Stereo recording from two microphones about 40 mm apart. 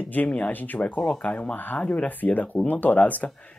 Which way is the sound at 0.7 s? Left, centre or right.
Left.